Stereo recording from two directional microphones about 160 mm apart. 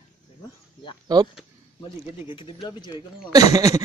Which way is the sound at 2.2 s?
30° left (ahead or behind).